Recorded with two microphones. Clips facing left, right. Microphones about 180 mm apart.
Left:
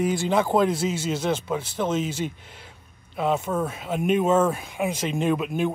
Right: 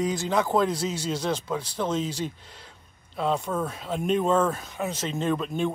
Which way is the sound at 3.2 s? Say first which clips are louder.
Left 2 dB; 5° left (ahead or behind).